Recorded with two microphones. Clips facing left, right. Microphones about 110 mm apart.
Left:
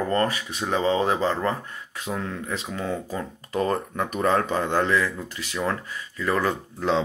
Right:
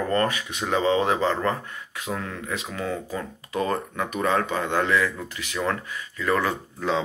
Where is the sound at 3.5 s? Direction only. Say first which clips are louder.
Left 1 dB; 40° left (ahead or behind).